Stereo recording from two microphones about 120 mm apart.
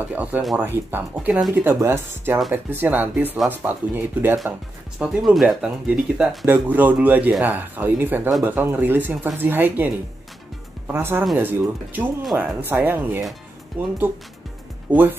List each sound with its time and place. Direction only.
0.0 s speech: 15° right (ahead or behind)